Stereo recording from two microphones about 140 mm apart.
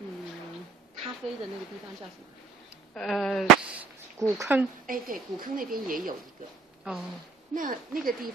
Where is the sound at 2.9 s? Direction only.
Centre (ahead or behind); by 4.7 s 15° right (ahead or behind).